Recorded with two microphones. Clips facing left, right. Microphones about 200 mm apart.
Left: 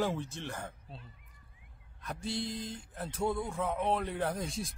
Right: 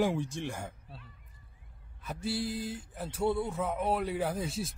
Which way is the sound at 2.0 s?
5° right (ahead or behind).